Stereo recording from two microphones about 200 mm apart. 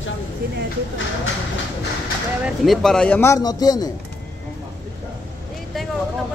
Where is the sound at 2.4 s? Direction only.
Centre (ahead or behind); by 3.9 s 20° left (ahead or behind).